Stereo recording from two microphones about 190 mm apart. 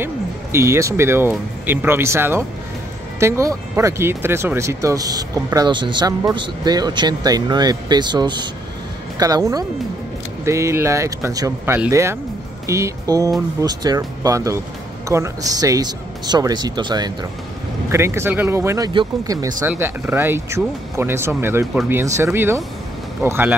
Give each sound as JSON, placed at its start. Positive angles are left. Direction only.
{"t": 0.0, "sound": "speech", "side_deg": -15}